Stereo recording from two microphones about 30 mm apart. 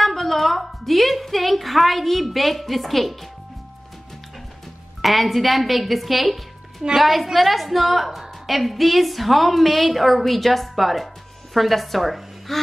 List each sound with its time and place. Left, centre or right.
0.0 s a woman's voice: centre
5.0 s a woman's voice: centre